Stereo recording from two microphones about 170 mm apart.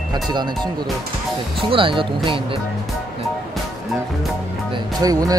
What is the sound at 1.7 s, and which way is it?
Speech, 30° right (ahead or behind).